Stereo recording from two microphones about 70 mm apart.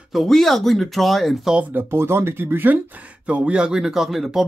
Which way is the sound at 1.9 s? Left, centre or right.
Right.